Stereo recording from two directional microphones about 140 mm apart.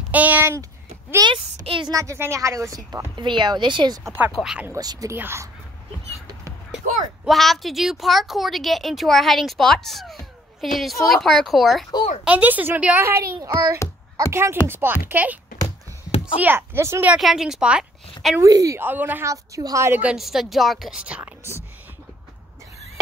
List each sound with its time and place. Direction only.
0.1 s a woman's voice: 10° right (ahead or behind)
1.2 s a woman's voice: 30° right (ahead or behind)
2.0 s a woman's voice: 20° right (ahead or behind)
4.0 s a woman's voice: 15° right (ahead or behind)
4.4 s a woman's voice: 5° right (ahead or behind)
4.6 s a woman's voice: 25° right (ahead or behind)
7.2 s a woman's voice: centre (ahead or behind)
12.3 s a woman's voice: 10° right (ahead or behind)
16.3 s a woman's voice: 15° right (ahead or behind)
17.2 s a woman's voice: centre (ahead or behind)
18.4 s a woman's voice: 25° right (ahead or behind)
19.3 s a woman's voice: 25° right (ahead or behind); by 21.3 s 10° right (ahead or behind)